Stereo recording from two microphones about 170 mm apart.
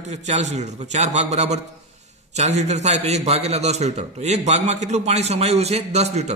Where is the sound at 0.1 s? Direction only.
45° right (ahead or behind).